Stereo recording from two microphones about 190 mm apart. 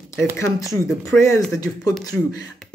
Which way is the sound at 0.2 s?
15° left (ahead or behind).